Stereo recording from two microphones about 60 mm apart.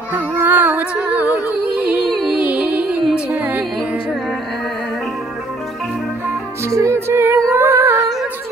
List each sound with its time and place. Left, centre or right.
0.1 s music: right
6.7 s music: right
7.1 s music: right